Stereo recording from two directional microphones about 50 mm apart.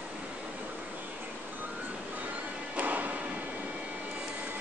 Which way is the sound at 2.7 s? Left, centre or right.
Right.